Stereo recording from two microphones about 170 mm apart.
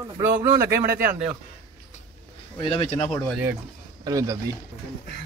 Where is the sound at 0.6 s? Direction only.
60° right (ahead or behind).